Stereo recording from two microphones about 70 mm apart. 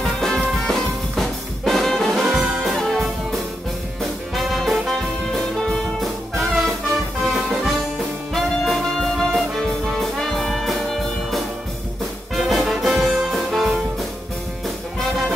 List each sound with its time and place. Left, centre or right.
0.0 s music: centre
2.2 s music: centre
2.6 s music: centre
4.4 s music: centre